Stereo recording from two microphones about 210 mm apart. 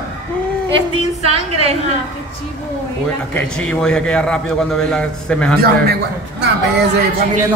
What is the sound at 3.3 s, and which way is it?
A man's voice, 5° left (ahead or behind).